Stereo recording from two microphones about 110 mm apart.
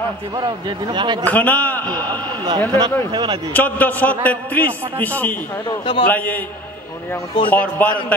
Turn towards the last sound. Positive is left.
turn(degrees=15)  # may be behind; listen again after turning